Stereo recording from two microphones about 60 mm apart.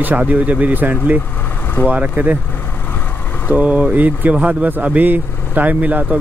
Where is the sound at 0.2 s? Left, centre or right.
Right.